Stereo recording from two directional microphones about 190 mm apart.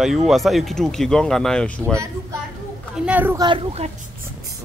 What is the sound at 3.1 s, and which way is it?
Speech, 10° right (ahead or behind).